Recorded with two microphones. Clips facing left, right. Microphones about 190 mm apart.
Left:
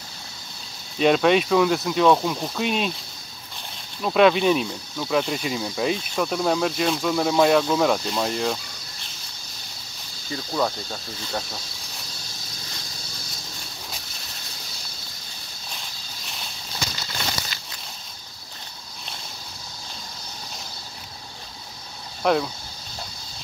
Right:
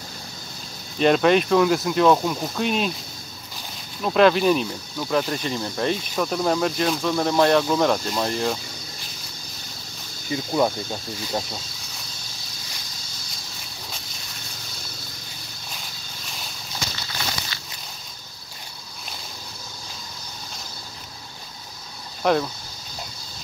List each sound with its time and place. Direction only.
0.9 s speech: centre (ahead or behind)
4.0 s speech: centre (ahead or behind)
10.3 s speech: 15° right (ahead or behind)
22.2 s speech: centre (ahead or behind)